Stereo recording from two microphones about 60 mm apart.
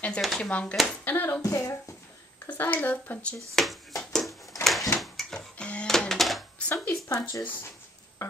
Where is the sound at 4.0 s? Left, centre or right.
Centre.